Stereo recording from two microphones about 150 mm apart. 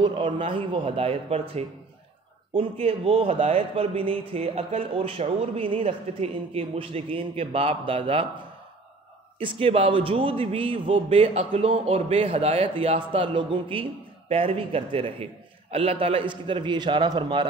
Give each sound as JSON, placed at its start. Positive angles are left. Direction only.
{"t": 0.0, "sound": "a man's voice", "side_deg": -30}
{"t": 9.4, "sound": "a man's voice", "side_deg": -35}